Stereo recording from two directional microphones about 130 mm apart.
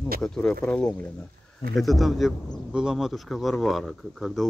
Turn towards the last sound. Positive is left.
turn(degrees=0)  # may be behind; listen again after turning